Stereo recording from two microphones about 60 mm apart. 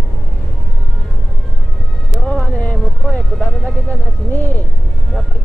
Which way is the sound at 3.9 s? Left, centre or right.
Left.